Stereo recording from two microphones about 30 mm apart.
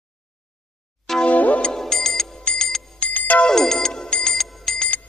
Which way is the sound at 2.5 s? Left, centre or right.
Left.